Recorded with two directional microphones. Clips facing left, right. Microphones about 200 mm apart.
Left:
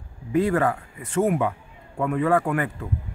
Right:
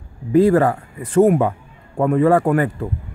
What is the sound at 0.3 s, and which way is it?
Speech, 35° right (ahead or behind).